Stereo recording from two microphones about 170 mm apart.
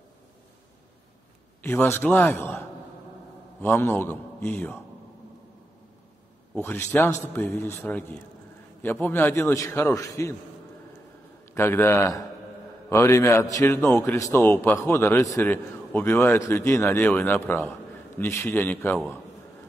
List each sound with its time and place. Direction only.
1.6 s a man's voice: 15° left (ahead or behind)
3.6 s a man's voice: 10° left (ahead or behind)
6.5 s a man's voice: 15° left (ahead or behind)
11.5 s a man's voice: 15° left (ahead or behind)